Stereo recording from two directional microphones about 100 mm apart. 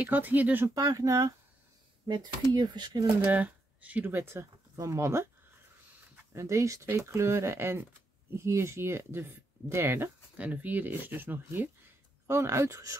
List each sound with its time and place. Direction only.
0.0 s speech: 15° right (ahead or behind)
0.7 s speech: 35° right (ahead or behind)
2.5 s speech: 45° right (ahead or behind)
3.2 s speech: 20° right (ahead or behind)
6.3 s speech: 30° right (ahead or behind)